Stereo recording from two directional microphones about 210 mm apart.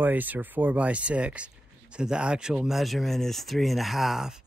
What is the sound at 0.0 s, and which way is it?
Speech, 10° right (ahead or behind).